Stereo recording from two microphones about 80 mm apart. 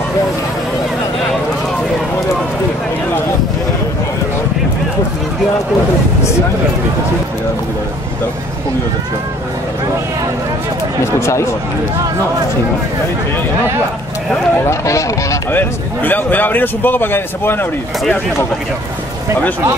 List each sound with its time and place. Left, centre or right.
11.1 s speech: left
14.7 s speech: left
15.5 s a man's voice: left